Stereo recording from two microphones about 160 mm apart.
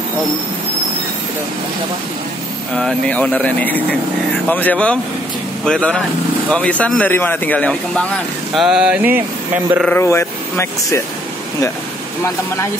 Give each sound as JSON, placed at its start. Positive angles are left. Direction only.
{"t": 2.7, "sound": "speech", "side_deg": 0}
{"t": 8.5, "sound": "a sound", "side_deg": -5}
{"t": 9.8, "sound": "speech", "side_deg": 15}